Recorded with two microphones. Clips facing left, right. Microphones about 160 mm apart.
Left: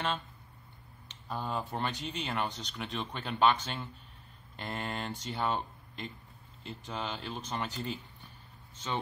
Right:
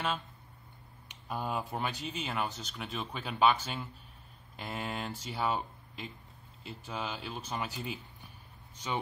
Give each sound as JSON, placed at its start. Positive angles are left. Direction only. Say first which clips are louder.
{"t": 1.0, "sound": "speech", "louder": "right 1 dB", "side_deg": -10}